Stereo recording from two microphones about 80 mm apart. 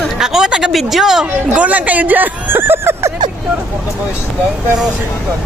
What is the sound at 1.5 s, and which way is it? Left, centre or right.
Speech, centre.